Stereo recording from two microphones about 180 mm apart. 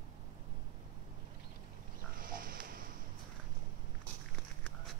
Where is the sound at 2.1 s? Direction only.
50° right (ahead or behind).